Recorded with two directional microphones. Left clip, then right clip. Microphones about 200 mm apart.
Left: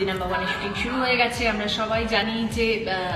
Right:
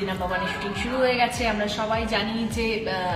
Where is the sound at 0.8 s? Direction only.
20° right (ahead or behind).